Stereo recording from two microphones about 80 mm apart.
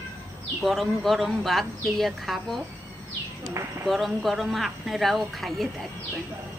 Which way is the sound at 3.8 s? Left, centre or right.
Centre.